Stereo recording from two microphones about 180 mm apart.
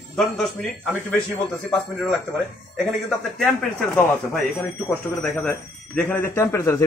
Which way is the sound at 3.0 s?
5° left (ahead or behind).